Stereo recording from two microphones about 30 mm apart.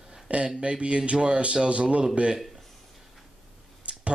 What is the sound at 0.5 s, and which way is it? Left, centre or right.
Speech, right.